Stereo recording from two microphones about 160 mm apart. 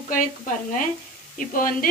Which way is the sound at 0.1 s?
55° left (ahead or behind).